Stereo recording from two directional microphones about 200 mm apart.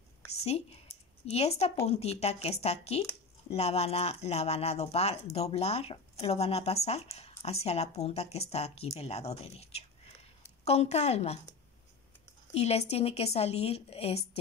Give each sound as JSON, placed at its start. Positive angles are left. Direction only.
{"t": 0.4, "sound": "a woman's voice", "side_deg": 30}
{"t": 12.5, "sound": "speech", "side_deg": 30}